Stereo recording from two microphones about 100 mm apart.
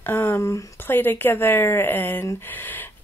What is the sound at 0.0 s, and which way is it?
Speech, 25° left (ahead or behind).